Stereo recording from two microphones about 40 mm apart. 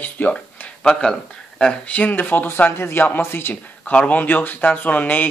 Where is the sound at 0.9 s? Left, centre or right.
Centre.